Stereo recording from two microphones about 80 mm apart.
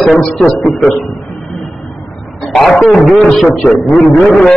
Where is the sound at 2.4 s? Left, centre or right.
Centre.